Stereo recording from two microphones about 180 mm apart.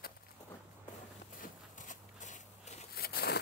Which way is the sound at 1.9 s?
40° left (ahead or behind).